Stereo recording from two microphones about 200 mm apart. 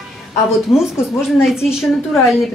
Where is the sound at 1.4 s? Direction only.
5° right (ahead or behind).